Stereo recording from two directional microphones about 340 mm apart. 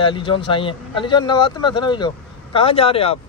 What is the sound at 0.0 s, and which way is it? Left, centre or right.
A man's voice, centre.